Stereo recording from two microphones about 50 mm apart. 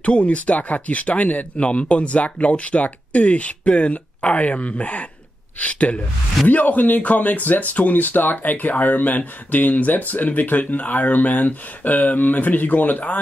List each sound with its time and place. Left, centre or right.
0.0 s speech: left